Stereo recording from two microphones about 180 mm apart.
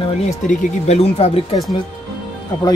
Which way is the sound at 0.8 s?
35° left (ahead or behind).